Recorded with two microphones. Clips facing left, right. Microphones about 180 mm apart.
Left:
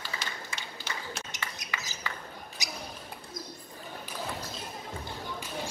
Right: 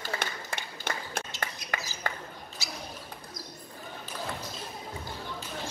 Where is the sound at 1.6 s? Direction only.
20° left (ahead or behind).